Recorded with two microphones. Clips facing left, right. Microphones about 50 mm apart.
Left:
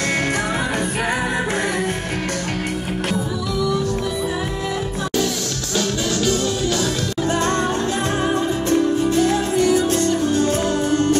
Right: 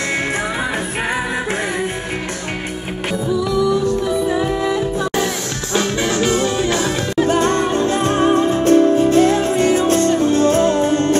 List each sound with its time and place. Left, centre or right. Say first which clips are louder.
5.8 s music: right 4 dB; right
8.2 s music: right 6 dB; right